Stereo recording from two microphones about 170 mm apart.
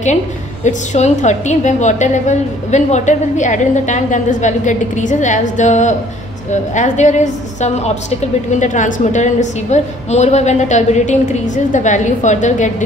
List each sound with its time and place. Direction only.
0.7 s a woman's voice: 40° left (ahead or behind)